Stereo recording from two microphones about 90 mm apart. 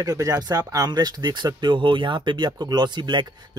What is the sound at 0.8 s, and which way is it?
Speech, 50° right (ahead or behind).